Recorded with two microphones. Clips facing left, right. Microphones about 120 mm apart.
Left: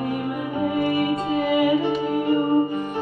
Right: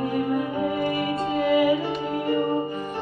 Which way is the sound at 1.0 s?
15° left (ahead or behind).